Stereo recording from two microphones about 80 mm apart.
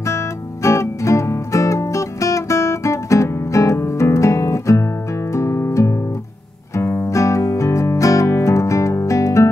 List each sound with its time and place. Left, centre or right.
0.0 s music: left